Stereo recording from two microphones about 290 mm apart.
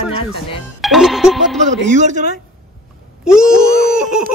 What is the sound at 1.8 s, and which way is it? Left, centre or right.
Speech, right.